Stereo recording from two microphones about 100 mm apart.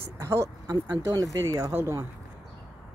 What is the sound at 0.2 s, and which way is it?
Speech, 30° right (ahead or behind).